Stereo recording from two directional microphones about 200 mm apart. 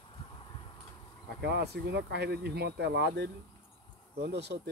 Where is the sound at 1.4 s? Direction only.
55° right (ahead or behind).